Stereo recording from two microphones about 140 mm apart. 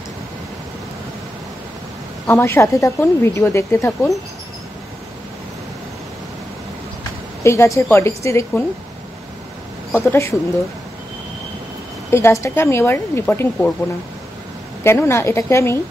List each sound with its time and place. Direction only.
2.2 s a woman's voice: 15° left (ahead or behind)
7.4 s a woman's voice: 20° left (ahead or behind)
9.9 s a woman's voice: 20° left (ahead or behind)
12.1 s speech: 20° left (ahead or behind)
14.8 s a woman's voice: 20° left (ahead or behind)